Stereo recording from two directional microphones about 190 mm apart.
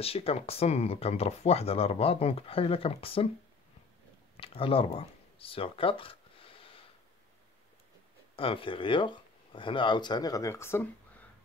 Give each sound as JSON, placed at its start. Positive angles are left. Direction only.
{"t": 0.0, "sound": "speech", "side_deg": 30}
{"t": 4.4, "sound": "a sound", "side_deg": 30}
{"t": 8.4, "sound": "speech", "side_deg": 30}